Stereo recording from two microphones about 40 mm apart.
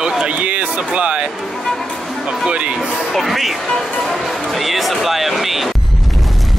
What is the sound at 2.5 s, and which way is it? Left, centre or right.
Speech, right.